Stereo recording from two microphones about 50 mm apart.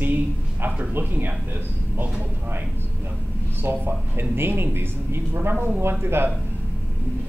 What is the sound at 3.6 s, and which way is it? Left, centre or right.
Speech, right.